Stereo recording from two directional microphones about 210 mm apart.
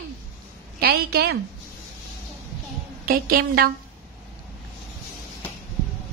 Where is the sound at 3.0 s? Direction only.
45° right (ahead or behind).